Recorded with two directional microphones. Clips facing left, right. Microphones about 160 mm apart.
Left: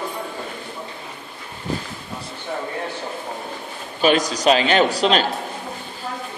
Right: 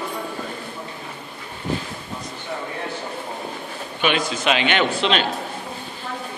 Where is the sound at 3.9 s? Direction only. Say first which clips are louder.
Left 4 dB; 40° left (ahead or behind).